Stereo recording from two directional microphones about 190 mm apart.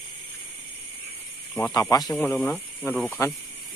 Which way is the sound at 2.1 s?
5° left (ahead or behind).